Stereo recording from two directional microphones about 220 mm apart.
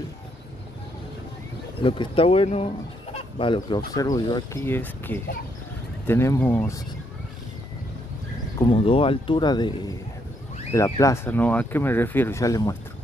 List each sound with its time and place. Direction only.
1.8 s speech: 25° left (ahead or behind)
8.5 s speech: 25° left (ahead or behind)